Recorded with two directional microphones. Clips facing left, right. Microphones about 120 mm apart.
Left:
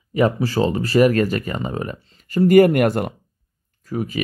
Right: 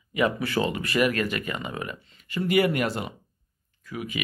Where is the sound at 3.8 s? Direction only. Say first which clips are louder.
Left 8 dB; 40° left (ahead or behind).